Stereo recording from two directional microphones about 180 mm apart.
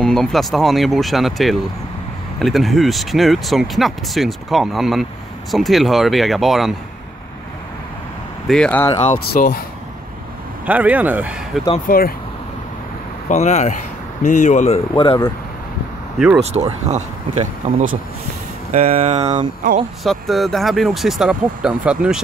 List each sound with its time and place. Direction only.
0.0 s speech: centre (ahead or behind)
8.5 s speech: 5° left (ahead or behind)
9.1 s speech: 50° left (ahead or behind)
10.6 s speech: 10° right (ahead or behind)
11.9 s speech: 50° left (ahead or behind)
13.3 s speech: 40° left (ahead or behind)
15.0 s speech: 25° left (ahead or behind)
16.4 s speech: 35° right (ahead or behind)
20.0 s speech: centre (ahead or behind)